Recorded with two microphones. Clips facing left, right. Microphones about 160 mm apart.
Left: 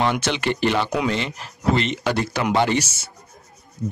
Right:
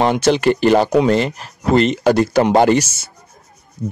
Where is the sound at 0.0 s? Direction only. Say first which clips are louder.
Right 8 dB; 35° right (ahead or behind).